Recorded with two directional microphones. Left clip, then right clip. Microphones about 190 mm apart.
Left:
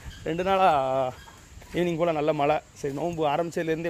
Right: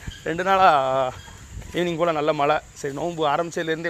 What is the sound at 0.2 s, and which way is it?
Speech, 10° left (ahead or behind).